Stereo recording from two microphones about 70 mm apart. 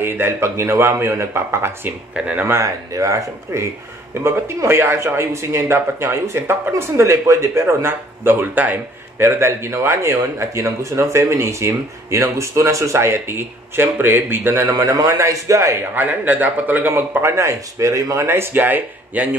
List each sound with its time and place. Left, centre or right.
0.0 s speech: right
2.1 s speech: centre
2.6 s speech: right
9.2 s speech: right
14.7 s speech: right
15.9 s a man's voice: right
17.4 s speech: right